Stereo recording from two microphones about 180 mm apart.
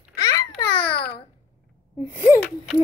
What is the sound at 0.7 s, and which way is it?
Babbling, 60° left (ahead or behind).